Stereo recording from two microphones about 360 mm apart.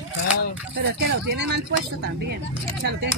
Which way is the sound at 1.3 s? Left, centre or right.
Right.